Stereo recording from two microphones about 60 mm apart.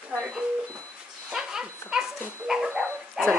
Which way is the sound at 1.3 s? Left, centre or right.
Centre.